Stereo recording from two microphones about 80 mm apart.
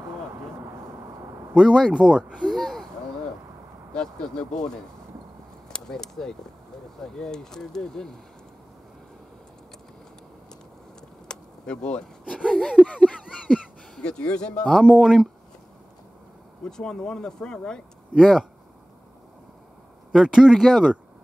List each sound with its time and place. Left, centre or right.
0.7 s vehicle: right
1.5 s speech: centre
2.4 s a sound: centre
3.9 s speech: centre
11.2 s a sound: centre
12.4 s speech: centre
16.6 s speech: centre
20.1 s speech: centre
20.5 s speech: centre